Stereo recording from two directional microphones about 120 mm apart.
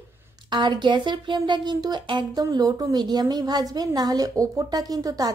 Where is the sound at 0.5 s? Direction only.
40° right (ahead or behind).